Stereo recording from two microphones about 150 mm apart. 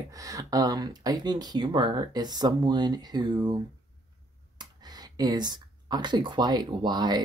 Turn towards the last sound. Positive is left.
turn(degrees=-30)  # may be behind; listen again after turning